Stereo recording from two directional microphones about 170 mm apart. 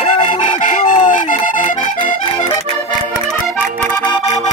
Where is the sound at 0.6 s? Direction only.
50° left (ahead or behind).